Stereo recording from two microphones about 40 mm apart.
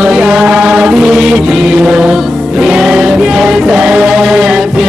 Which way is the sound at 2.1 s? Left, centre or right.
Centre.